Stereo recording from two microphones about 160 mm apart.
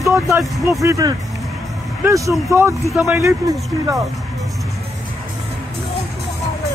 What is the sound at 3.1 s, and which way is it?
Speech, 20° right (ahead or behind).